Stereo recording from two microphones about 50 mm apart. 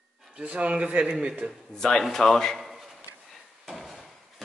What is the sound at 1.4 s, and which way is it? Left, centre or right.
Speech, right.